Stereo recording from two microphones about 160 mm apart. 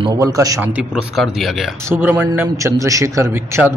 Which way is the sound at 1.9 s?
10° right (ahead or behind).